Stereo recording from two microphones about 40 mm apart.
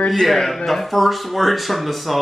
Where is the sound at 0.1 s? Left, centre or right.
Centre.